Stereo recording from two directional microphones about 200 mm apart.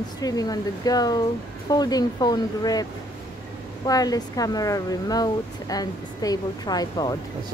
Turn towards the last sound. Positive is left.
turn(degrees=20)  # may be behind; listen again after turning